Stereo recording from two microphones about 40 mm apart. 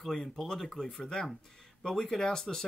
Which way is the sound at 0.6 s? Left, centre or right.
Centre.